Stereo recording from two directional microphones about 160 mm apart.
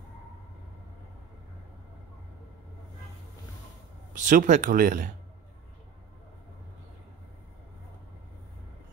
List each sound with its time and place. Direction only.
4.1 s speech: 55° right (ahead or behind)